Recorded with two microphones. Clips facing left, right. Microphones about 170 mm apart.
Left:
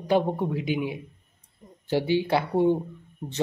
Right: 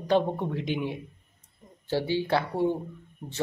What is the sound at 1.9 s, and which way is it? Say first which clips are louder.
Speech: left 3 dB; 15° left (ahead or behind).